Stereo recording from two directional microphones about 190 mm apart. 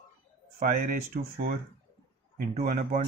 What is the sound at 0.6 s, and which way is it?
Speech, 50° right (ahead or behind).